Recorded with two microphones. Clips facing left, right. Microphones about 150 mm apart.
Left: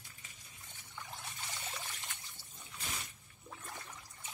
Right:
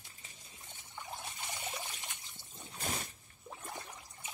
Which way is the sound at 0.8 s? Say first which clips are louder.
Right 3 dB; 20° right (ahead or behind).